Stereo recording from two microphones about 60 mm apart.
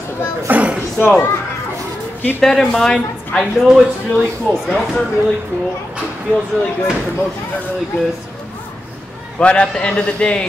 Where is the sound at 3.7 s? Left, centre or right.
Centre.